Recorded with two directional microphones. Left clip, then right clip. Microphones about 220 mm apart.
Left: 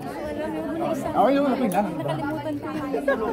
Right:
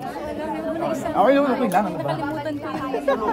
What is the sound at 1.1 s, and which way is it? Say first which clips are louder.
Speech: right 3 dB; 25° right (ahead or behind).